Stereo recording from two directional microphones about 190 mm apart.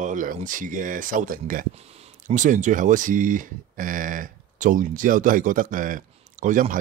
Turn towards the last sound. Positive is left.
turn(degrees=-45)  # may be behind; listen again after turning